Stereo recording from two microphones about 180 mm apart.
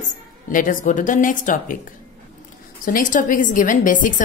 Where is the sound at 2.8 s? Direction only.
45° left (ahead or behind).